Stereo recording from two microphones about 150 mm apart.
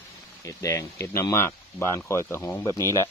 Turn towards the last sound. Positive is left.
turn(degrees=20)  # may be behind; listen again after turning